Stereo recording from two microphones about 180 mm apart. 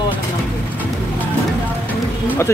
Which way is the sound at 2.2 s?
15° left (ahead or behind).